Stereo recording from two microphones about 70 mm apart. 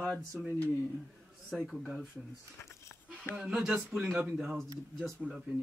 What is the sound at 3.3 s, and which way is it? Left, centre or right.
Speech, centre.